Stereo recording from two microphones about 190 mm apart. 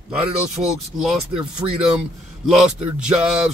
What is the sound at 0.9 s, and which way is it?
Speech, centre (ahead or behind).